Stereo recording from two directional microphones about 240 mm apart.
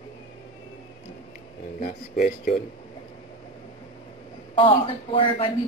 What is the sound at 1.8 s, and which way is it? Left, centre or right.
Speech, left.